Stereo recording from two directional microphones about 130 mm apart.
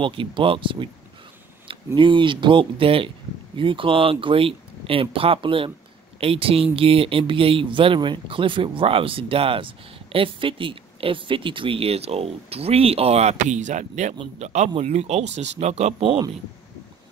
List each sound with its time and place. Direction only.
0.0 s speech: 40° right (ahead or behind)
2.0 s speech: 40° right (ahead or behind); by 15.9 s 55° right (ahead or behind)